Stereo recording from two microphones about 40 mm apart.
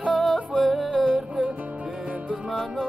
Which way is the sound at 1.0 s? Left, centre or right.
Right.